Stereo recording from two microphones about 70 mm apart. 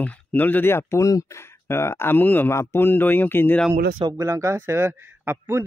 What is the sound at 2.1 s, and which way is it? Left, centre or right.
Speech, left.